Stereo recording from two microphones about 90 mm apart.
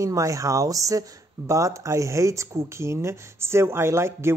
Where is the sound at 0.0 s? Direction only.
40° right (ahead or behind).